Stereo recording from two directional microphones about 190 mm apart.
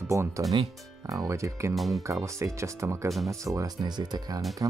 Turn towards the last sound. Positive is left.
turn(degrees=-20)  # may be behind; listen again after turning